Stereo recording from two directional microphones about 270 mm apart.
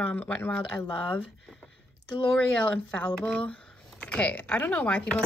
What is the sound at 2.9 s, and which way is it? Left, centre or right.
Speech, centre.